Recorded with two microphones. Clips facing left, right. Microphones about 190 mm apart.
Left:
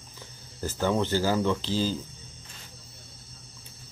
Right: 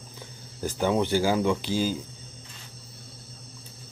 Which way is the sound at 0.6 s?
15° right (ahead or behind).